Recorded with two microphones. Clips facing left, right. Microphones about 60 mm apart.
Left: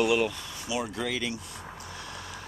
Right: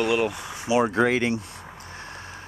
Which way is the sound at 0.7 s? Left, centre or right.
Right.